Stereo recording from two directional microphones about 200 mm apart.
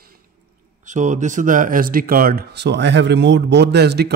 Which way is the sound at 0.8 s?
35° right (ahead or behind).